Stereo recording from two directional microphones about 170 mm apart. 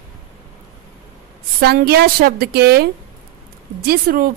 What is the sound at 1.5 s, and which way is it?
A woman's voice, 65° right (ahead or behind).